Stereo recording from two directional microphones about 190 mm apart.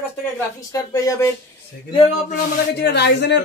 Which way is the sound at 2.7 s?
60° left (ahead or behind).